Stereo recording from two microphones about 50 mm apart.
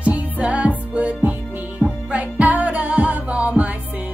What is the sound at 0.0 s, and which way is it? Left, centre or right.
Music, right.